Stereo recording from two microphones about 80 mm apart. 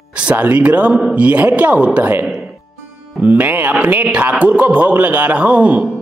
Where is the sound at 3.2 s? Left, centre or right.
Right.